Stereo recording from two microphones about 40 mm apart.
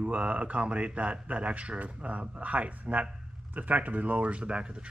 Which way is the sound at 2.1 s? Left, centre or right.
Right.